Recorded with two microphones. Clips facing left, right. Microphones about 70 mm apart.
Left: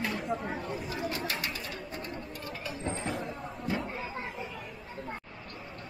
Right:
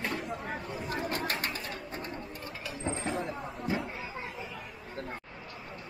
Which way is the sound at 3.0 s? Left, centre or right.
Centre.